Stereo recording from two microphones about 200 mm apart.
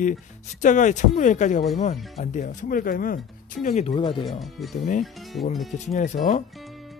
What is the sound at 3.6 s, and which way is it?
Speech, 30° left (ahead or behind).